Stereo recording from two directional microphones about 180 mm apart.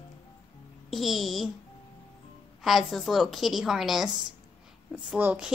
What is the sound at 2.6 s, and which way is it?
A woman's voice, centre (ahead or behind).